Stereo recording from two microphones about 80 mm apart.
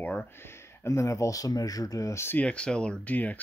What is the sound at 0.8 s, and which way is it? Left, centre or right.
Speech, left.